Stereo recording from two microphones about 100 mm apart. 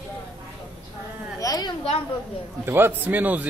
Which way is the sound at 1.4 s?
40° left (ahead or behind).